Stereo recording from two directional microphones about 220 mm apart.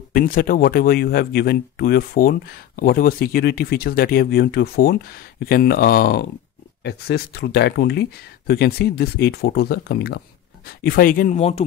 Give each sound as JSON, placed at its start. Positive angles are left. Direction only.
{"t": 0.1, "sound": "speech", "side_deg": 40}